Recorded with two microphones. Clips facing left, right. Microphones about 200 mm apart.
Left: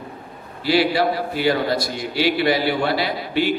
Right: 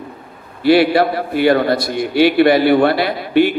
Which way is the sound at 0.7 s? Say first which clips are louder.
Right 6 dB; 60° right (ahead or behind).